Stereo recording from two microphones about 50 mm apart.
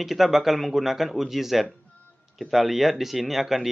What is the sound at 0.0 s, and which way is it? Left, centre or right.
A man's voice, centre.